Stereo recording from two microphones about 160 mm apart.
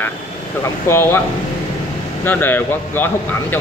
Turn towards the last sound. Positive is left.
turn(degrees=15)  # may be behind; listen again after turning